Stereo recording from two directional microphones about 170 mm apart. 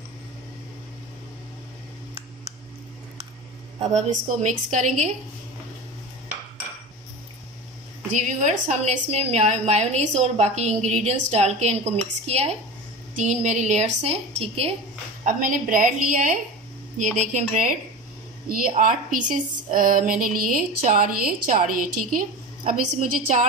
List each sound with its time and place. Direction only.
3.8 s speech: 40° right (ahead or behind)
8.1 s a woman's voice: 45° right (ahead or behind)
15.2 s speech: 50° right (ahead or behind)
18.8 s speech: 50° right (ahead or behind)